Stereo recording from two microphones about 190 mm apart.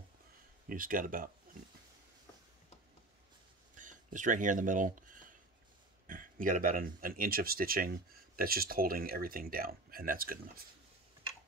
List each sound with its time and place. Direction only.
0.7 s speech: 45° right (ahead or behind)
3.7 s speech: 45° right (ahead or behind)